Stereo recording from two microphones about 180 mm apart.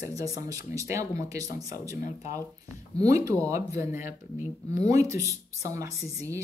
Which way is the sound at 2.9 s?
20° right (ahead or behind).